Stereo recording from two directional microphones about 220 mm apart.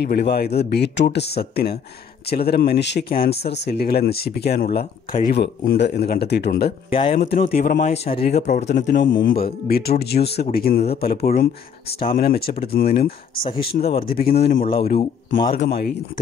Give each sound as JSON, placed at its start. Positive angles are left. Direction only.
{"t": 0.0, "sound": "speech", "side_deg": 50}
{"t": 6.9, "sound": "speech", "side_deg": 25}
{"t": 7.3, "sound": "speech", "side_deg": 40}
{"t": 13.5, "sound": "speech", "side_deg": 25}
{"t": 14.0, "sound": "speech", "side_deg": 45}